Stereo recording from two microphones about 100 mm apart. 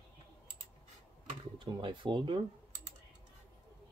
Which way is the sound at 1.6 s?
55° right (ahead or behind).